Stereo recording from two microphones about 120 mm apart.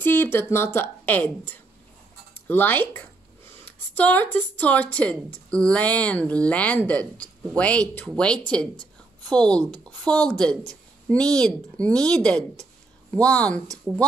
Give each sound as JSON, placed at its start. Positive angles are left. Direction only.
{"t": 0.0, "sound": "speech", "side_deg": 15}